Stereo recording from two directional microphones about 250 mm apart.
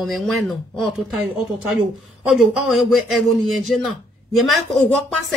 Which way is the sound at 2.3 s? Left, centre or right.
Centre.